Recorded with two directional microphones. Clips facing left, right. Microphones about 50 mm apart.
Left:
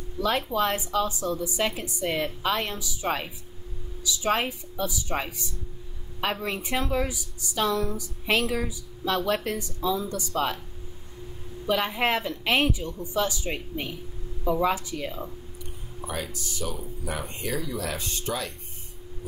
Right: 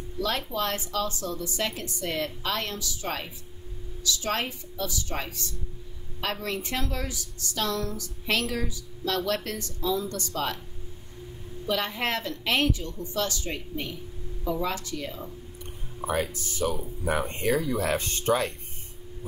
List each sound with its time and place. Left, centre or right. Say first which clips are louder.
0.2 s a woman's voice: left 4 dB; centre
11.6 s a woman's voice: left 3 dB; centre
16.1 s speech: right 5 dB; right